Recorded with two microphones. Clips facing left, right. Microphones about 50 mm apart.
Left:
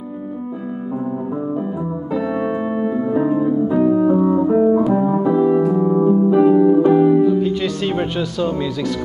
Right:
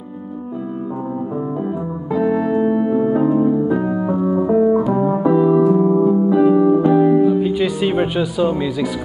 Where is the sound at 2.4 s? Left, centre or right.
Left.